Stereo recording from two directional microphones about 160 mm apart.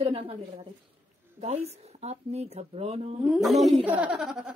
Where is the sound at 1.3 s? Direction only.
40° right (ahead or behind).